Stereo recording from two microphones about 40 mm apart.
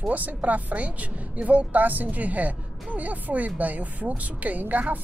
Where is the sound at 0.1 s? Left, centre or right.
Right.